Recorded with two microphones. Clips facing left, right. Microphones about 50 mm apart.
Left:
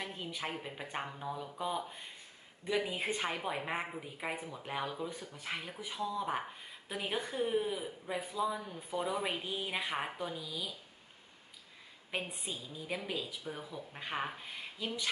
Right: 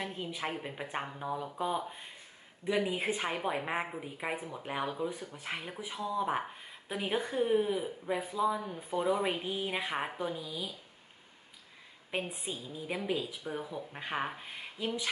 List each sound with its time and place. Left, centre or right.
0.0 s a woman's voice: centre
5.9 s speech: right
6.9 s a woman's voice: centre
10.3 s speech: right
12.1 s a woman's voice: centre
14.0 s a woman's voice: centre